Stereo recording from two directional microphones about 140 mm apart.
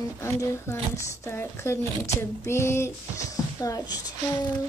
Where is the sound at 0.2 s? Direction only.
20° left (ahead or behind).